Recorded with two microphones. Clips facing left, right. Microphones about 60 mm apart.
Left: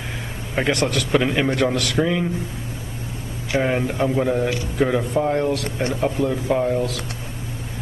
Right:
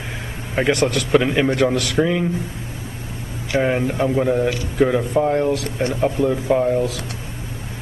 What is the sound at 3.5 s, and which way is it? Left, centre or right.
A man's voice, centre.